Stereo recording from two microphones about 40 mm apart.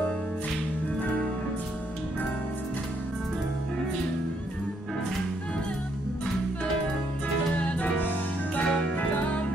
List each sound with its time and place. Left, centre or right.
8.5 s music: left